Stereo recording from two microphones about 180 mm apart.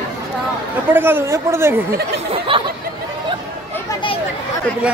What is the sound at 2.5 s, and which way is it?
Speech, 30° right (ahead or behind).